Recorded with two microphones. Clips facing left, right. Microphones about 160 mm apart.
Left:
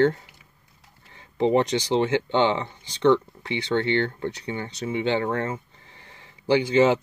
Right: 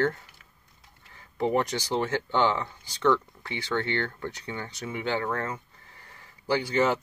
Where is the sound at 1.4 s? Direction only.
20° left (ahead or behind).